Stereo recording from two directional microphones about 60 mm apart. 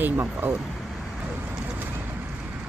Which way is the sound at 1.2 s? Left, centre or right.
Right.